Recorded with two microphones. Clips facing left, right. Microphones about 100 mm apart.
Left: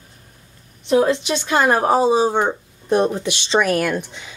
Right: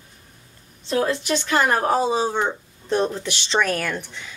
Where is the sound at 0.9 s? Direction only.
20° left (ahead or behind).